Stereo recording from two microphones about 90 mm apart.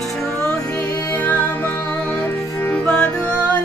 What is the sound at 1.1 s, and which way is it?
Music, 20° left (ahead or behind).